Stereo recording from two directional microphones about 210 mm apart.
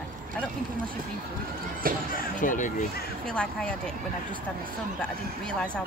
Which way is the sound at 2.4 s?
40° left (ahead or behind).